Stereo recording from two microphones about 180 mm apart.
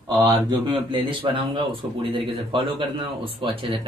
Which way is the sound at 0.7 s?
30° right (ahead or behind).